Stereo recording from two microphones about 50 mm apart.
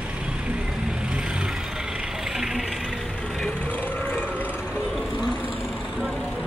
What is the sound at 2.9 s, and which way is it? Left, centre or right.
Vehicle, centre.